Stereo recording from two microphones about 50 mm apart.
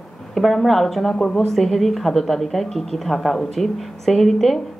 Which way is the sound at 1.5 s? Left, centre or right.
Centre.